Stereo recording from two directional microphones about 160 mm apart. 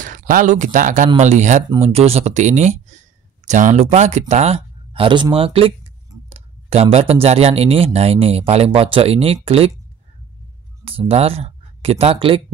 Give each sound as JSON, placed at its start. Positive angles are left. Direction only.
{"t": 0.0, "sound": "speech", "side_deg": -55}
{"t": 10.9, "sound": "speech", "side_deg": -35}